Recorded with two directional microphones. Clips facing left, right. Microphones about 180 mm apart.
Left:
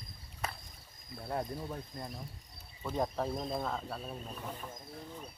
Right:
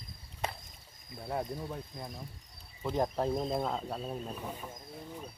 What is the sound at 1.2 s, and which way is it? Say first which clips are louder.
Speech: right 1 dB; 5° right (ahead or behind).